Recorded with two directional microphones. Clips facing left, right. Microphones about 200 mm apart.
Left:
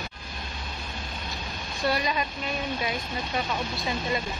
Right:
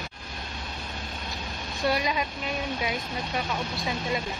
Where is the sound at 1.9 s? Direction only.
10° right (ahead or behind).